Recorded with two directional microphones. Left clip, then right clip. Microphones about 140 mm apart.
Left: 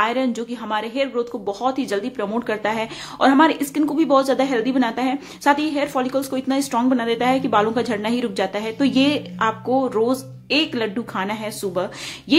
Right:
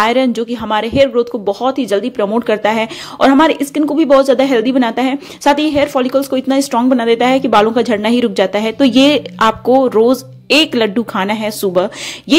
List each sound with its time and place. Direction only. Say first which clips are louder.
0.0 s speech: right 8 dB; 45° right (ahead or behind)